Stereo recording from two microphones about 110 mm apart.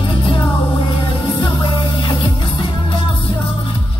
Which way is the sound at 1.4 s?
40° left (ahead or behind).